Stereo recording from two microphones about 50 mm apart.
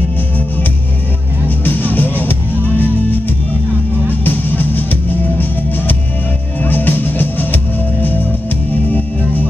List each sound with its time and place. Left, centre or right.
1.6 s music: left
6.6 s music: left